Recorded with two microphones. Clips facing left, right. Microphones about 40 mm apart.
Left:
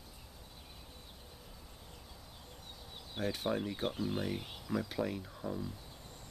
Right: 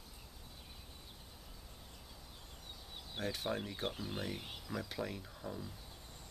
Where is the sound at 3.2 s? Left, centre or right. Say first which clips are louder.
Left 4 dB; centre.